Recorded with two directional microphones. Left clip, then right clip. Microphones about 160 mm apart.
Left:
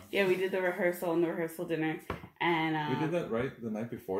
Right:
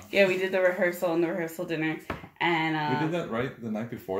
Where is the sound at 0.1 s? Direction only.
15° right (ahead or behind).